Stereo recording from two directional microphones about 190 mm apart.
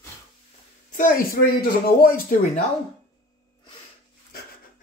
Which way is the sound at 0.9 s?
45° left (ahead or behind).